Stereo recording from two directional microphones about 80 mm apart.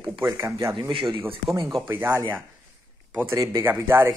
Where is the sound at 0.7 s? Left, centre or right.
Right.